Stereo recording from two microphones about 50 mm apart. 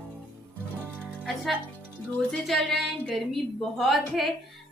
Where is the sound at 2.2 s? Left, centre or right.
Centre.